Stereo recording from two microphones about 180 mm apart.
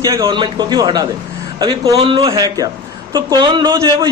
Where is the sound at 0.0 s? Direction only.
20° right (ahead or behind).